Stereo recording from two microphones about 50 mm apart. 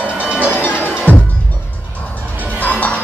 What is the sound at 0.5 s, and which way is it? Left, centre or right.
Music, left.